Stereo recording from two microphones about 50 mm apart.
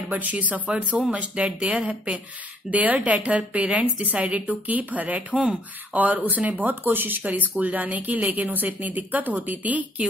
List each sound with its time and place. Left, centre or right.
0.1 s speech: right
5.3 s speech: centre
5.9 s speech: right